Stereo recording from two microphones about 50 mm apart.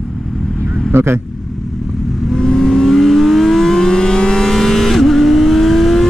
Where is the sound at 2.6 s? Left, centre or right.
Centre.